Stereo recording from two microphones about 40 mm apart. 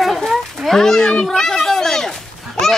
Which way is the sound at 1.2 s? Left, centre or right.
Centre.